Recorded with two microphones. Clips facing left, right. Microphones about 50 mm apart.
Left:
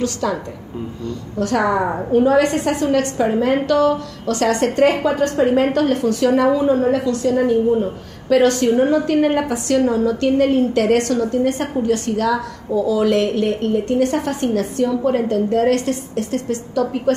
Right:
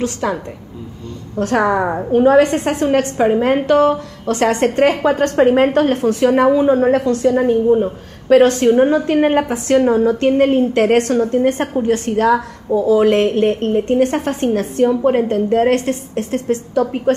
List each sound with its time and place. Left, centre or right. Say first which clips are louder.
0.0 s a woman's voice: right 1 dB; right
1.4 s a woman's voice: right 2 dB; right
1.8 s a woman's voice: right 2 dB; centre
2.1 s a woman's voice: right 3 dB; right